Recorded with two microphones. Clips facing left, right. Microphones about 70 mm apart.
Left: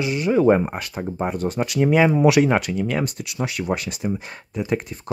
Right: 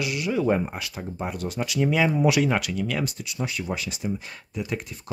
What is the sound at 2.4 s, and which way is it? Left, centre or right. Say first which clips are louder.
Speech: left 5 dB; left.